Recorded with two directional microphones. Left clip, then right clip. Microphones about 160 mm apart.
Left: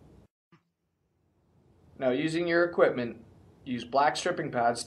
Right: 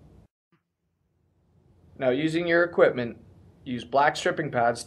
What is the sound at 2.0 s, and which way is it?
Speech, 50° right (ahead or behind).